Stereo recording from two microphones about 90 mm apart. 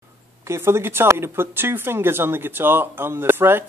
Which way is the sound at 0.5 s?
30° right (ahead or behind).